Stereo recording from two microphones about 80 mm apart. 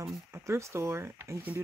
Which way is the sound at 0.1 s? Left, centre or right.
Right.